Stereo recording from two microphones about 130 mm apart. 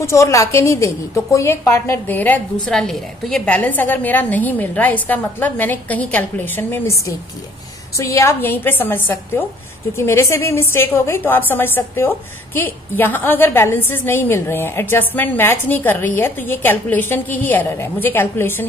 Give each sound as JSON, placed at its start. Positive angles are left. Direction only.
{"t": 0.0, "sound": "a woman's voice", "side_deg": 20}
{"t": 8.0, "sound": "a woman's voice", "side_deg": 25}